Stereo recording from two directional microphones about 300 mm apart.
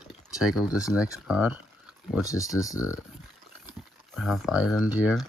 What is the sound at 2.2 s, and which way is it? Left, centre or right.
Speech, centre.